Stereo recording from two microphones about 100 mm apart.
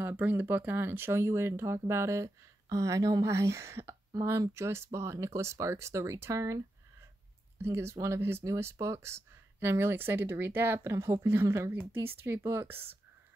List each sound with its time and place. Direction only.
0.0 s speech: 15° right (ahead or behind)